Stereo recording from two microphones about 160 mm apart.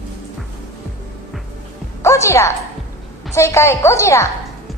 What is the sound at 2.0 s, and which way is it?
A woman's voice, 20° left (ahead or behind).